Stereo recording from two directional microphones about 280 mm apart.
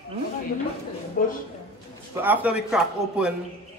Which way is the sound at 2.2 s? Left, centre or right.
Centre.